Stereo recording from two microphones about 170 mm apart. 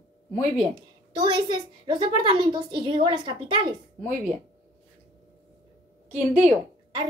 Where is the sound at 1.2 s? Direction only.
25° right (ahead or behind).